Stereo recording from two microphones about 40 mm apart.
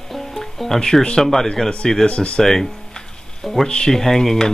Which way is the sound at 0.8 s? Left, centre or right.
Centre.